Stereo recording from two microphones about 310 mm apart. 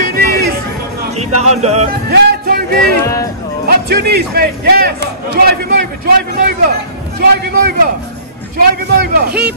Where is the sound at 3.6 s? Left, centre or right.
Right.